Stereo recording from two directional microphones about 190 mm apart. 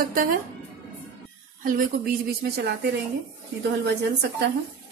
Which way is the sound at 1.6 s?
55° right (ahead or behind).